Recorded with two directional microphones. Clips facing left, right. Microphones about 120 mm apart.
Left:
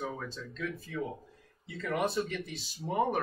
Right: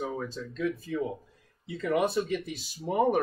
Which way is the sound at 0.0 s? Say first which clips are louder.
Right 5 dB; 15° right (ahead or behind).